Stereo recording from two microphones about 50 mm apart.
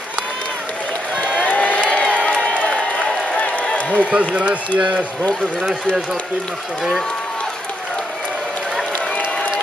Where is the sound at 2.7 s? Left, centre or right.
Centre.